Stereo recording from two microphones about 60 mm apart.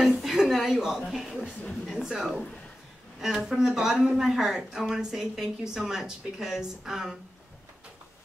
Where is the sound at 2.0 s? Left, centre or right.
Centre.